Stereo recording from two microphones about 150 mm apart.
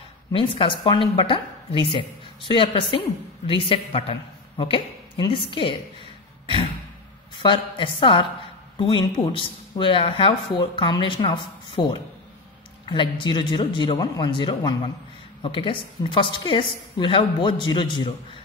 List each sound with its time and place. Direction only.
0.3 s speech: 35° left (ahead or behind)
6.4 s a sound: 35° left (ahead or behind)
7.3 s speech: 35° left (ahead or behind)